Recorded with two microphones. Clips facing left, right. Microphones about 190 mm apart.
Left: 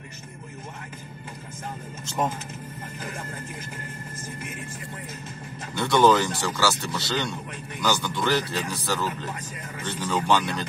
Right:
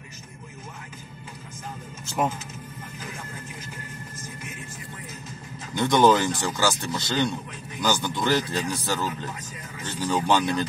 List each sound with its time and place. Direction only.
2.0 s vehicle: 10° right (ahead or behind)
5.8 s speech: 15° right (ahead or behind)